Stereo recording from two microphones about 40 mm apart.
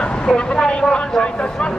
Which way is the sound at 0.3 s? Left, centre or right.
Centre.